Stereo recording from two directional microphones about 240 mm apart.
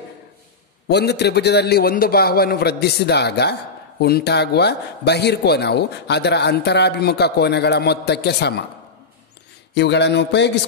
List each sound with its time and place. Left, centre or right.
0.8 s a man's voice: left
9.8 s a man's voice: left